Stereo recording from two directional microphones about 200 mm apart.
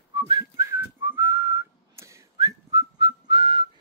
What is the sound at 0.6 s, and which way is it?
Whistling, 15° right (ahead or behind).